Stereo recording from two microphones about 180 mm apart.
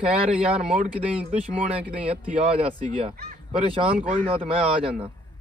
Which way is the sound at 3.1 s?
60° right (ahead or behind).